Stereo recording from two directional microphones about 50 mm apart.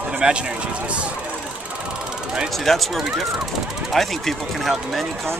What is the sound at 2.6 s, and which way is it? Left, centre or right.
Speech, centre.